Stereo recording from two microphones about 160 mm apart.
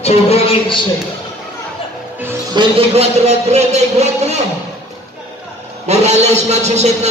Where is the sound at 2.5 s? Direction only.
40° right (ahead or behind).